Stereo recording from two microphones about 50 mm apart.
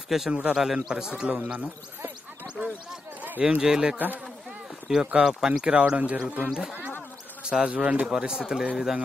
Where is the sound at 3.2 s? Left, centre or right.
Right.